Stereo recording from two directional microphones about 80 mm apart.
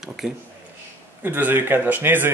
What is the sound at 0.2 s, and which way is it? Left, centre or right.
Speech, centre.